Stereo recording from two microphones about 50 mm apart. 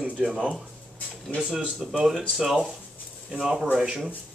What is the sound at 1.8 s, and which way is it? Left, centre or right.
Speech, centre.